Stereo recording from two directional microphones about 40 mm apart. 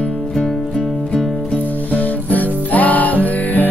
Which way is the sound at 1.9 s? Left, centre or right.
Left.